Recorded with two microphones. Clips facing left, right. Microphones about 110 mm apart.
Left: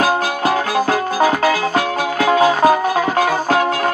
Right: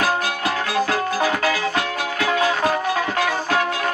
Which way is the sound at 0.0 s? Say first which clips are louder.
Left 5 dB; 45° left (ahead or behind).